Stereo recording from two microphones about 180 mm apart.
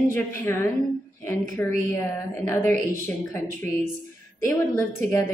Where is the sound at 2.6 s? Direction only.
45° right (ahead or behind).